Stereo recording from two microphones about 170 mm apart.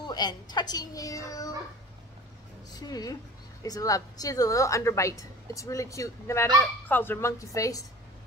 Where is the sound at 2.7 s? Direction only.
25° left (ahead or behind).